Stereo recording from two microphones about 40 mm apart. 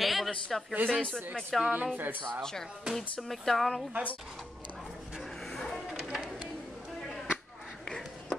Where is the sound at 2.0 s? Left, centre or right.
Right.